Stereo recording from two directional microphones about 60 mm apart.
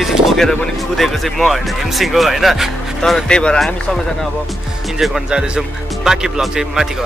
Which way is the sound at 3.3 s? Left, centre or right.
Centre.